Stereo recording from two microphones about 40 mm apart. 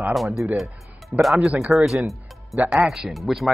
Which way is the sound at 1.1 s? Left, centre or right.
Right.